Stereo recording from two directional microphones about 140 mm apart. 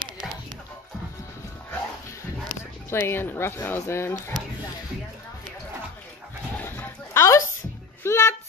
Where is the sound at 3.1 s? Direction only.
15° left (ahead or behind).